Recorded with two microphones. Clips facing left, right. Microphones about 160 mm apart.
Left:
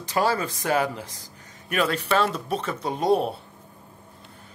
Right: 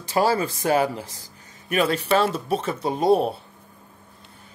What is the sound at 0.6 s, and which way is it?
Speech, 30° right (ahead or behind).